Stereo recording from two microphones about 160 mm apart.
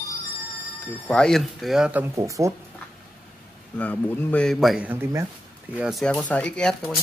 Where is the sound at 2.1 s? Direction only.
20° right (ahead or behind).